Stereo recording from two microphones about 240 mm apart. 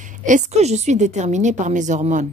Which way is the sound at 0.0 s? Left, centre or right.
Right.